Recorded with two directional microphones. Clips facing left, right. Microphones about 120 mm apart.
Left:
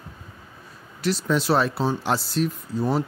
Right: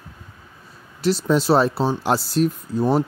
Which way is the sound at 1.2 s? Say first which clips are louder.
Right 4 dB; 30° right (ahead or behind).